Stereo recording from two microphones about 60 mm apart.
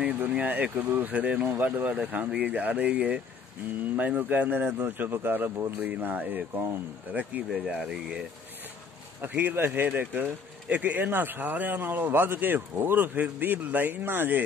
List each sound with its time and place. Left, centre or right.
0.0 s speech: right
9.2 s speech: right